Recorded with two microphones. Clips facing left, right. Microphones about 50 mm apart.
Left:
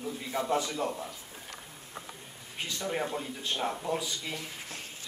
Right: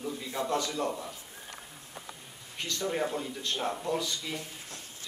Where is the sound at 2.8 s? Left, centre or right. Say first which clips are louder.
Right 2 dB; centre.